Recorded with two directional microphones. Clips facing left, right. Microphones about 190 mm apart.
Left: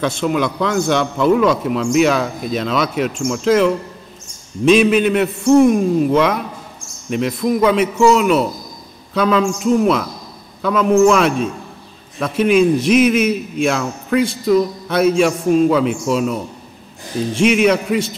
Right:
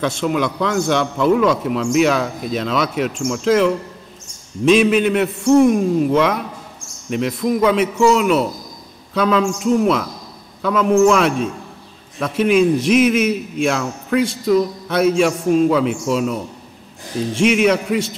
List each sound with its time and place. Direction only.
0.0 s speech: 10° left (ahead or behind)